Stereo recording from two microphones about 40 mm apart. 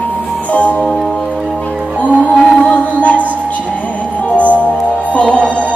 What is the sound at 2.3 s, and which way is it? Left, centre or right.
Music, left.